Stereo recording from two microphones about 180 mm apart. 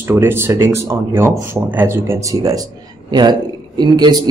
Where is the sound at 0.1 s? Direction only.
15° right (ahead or behind).